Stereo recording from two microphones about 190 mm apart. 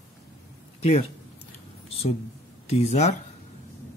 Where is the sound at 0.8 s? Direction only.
35° left (ahead or behind).